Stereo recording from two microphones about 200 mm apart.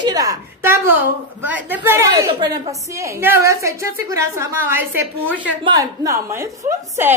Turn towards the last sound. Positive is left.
turn(degrees=-10)  # may be behind; listen again after turning